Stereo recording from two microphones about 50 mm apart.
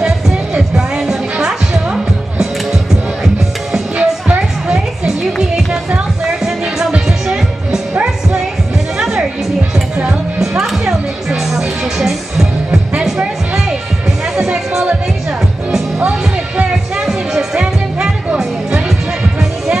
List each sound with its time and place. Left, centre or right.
0.7 s music: centre
4.0 s music: right
8.9 s music: centre
10.6 s music: centre
14.3 s music: centre
16.0 s music: right
17.0 s music: centre